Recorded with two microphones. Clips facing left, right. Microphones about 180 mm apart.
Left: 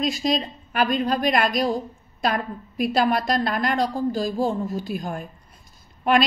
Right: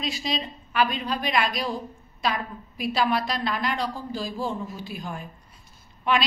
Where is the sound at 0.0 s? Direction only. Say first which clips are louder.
Left 6 dB; 45° left (ahead or behind).